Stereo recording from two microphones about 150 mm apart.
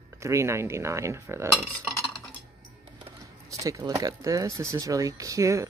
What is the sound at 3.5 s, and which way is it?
Speech, 20° right (ahead or behind).